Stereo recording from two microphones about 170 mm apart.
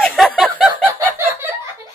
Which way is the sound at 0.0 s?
Centre (ahead or behind).